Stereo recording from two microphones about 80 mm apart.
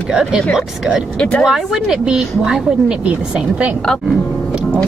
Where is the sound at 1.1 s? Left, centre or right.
Centre.